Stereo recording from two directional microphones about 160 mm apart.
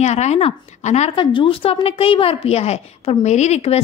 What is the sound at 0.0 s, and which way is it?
Speech, 45° left (ahead or behind).